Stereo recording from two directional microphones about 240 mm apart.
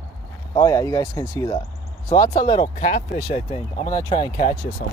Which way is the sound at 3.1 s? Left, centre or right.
Left.